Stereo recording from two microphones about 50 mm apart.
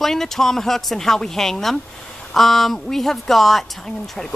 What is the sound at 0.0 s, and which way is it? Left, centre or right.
Speech, centre.